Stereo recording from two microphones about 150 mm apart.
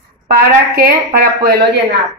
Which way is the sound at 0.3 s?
85° right.